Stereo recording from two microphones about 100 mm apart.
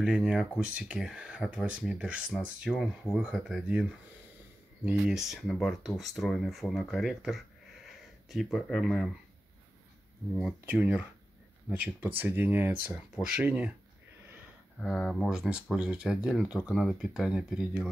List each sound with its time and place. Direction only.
0.0 s speech: 10° right (ahead or behind)
5.0 s speech: 5° right (ahead or behind)
10.6 s speech: 20° right (ahead or behind)
14.8 s speech: 5° left (ahead or behind)